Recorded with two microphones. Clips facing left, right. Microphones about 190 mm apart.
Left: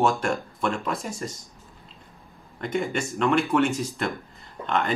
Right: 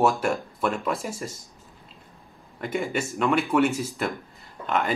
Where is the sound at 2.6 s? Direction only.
5° right (ahead or behind).